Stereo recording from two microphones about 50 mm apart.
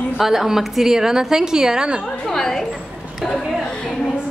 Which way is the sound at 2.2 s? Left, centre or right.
Centre.